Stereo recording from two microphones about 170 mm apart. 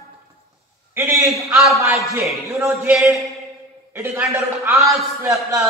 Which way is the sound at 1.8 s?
15° right (ahead or behind).